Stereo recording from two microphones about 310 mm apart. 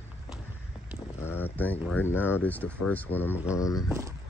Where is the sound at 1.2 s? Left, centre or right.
Centre.